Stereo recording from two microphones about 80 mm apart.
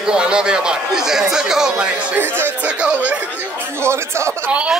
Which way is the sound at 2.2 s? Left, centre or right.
Right.